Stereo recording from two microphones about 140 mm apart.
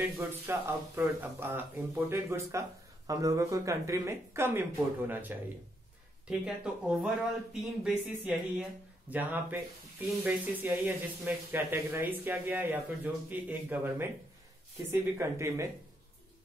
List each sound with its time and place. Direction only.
0.0 s speech: 15° right (ahead or behind)